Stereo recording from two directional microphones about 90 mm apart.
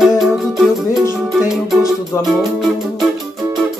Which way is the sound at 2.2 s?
Centre (ahead or behind).